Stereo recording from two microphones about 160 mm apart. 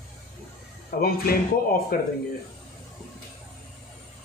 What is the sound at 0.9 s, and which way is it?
Speech, 70° left (ahead or behind).